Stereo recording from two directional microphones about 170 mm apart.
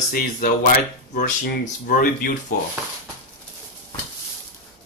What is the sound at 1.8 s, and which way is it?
Speech, 55° left (ahead or behind).